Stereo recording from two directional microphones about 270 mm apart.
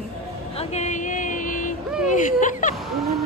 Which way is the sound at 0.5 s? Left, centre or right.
Left.